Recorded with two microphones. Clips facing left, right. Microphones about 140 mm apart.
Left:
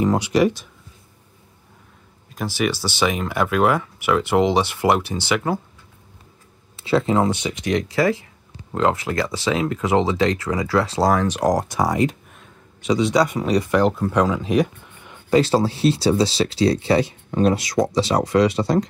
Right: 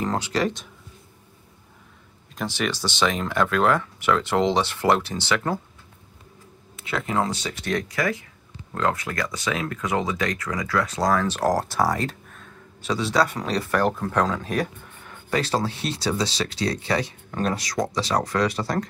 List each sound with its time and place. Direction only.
0.0 s speech: 15° left (ahead or behind)
2.3 s speech: 5° left (ahead or behind)
6.8 s speech: 30° left (ahead or behind)
11.2 s speech: 15° left (ahead or behind)
15.2 s speech: 25° left (ahead or behind)